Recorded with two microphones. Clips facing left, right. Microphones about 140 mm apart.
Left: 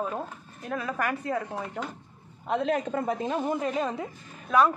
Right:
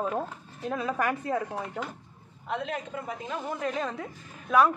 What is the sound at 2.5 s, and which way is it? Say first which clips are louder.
Speech: left 6 dB; 30° left (ahead or behind).